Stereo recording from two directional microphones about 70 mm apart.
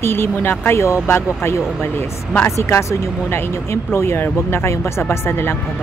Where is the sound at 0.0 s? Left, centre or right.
Left.